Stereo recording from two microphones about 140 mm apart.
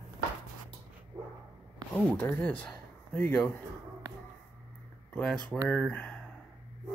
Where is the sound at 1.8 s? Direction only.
30° right (ahead or behind).